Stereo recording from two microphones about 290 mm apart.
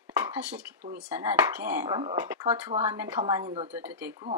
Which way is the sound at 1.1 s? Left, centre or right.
Centre.